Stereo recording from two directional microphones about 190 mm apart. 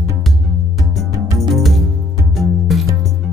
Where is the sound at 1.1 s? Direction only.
15° right (ahead or behind).